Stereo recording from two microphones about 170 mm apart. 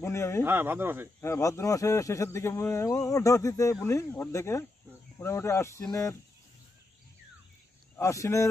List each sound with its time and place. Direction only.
0.0 s speech: 15° left (ahead or behind)
0.4 s speech: 15° right (ahead or behind)
1.2 s speech: 20° left (ahead or behind)
7.9 s speech: 20° left (ahead or behind)